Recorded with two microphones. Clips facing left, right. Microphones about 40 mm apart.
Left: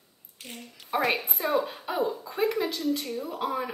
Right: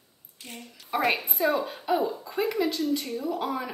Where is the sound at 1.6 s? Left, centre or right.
Centre.